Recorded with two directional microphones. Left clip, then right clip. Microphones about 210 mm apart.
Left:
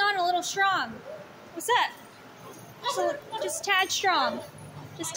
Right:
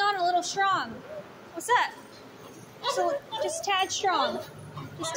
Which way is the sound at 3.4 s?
20° left (ahead or behind).